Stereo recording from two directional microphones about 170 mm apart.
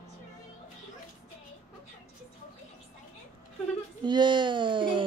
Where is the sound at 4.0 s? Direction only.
25° right (ahead or behind).